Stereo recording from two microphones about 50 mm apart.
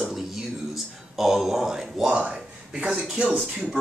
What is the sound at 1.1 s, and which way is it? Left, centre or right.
A man's voice, centre.